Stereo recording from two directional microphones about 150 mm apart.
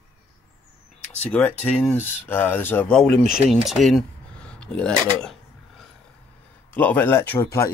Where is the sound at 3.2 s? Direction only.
55° right (ahead or behind).